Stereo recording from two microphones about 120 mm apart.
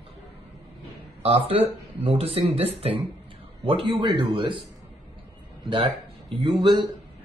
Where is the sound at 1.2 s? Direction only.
55° right (ahead or behind).